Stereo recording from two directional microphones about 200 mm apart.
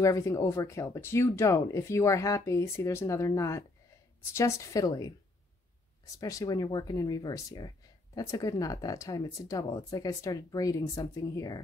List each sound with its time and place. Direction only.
0.0 s speech: 15° left (ahead or behind)
6.1 s speech: 15° left (ahead or behind)